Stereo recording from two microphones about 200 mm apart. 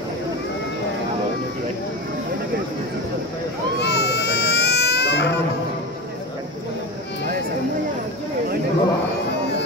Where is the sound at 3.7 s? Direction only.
60° left (ahead or behind).